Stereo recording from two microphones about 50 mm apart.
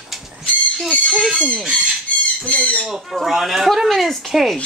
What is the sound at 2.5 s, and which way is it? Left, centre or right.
Speech, left.